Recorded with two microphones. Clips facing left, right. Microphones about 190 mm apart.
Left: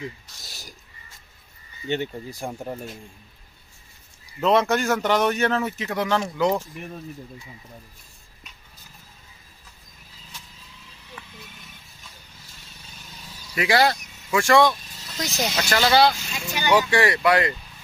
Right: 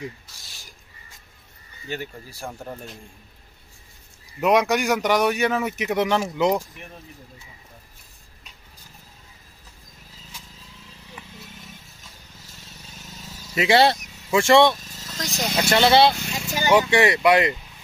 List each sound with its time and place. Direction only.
0.5 s a sound: 40° left (ahead or behind)
1.9 s speech: 20° left (ahead or behind)
4.4 s speech: 15° right (ahead or behind)
11.2 s a sound: 15° right (ahead or behind)
13.6 s speech: 25° right (ahead or behind)
15.1 s speech: centre (ahead or behind)
15.5 s speech: 25° right (ahead or behind)